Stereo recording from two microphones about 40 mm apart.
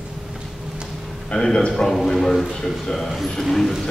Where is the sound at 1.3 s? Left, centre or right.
Centre.